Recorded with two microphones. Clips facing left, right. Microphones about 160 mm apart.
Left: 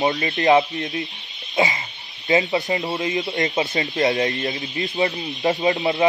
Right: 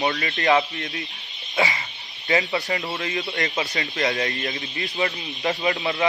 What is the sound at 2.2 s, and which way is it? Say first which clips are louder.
Speech: left 4 dB; 20° left (ahead or behind).